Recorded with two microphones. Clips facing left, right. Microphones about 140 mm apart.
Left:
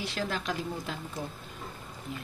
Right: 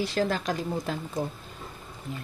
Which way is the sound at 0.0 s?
40° right (ahead or behind).